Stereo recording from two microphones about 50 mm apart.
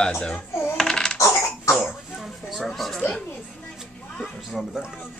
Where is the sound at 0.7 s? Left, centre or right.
Centre.